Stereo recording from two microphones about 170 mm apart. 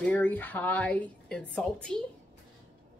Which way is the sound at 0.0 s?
10° left (ahead or behind).